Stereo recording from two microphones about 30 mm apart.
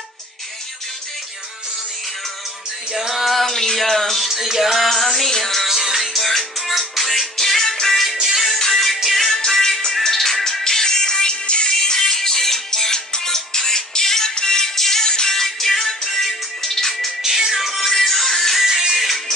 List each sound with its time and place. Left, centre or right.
2.9 s music: centre
3.4 s a sound: centre
3.9 s music: centre
4.2 s music: centre
4.8 s music: centre
5.7 s music: centre
5.9 s music: centre
8.5 s music: centre; by 11.7 s left
11.7 s music: centre
17.2 s music: centre
17.7 s music: centre
18.6 s music: centre
18.9 s music: centre